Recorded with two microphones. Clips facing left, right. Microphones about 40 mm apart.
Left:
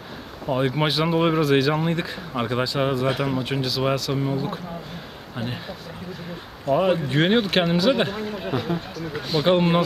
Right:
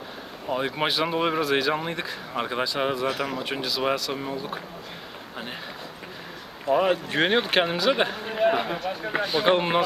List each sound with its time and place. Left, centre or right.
0.5 s speech: centre
6.6 s a man's voice: centre
8.3 s a sound: right
9.2 s speech: centre